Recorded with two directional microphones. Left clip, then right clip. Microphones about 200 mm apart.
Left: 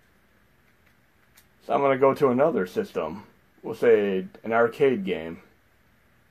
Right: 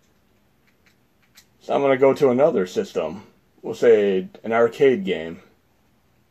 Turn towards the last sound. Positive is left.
turn(degrees=-15)  # may be behind; listen again after turning